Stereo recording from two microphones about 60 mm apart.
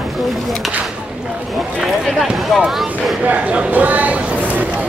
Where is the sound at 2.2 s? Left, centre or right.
Centre.